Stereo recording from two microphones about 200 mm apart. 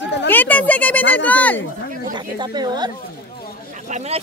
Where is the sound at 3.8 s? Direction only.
35° right (ahead or behind).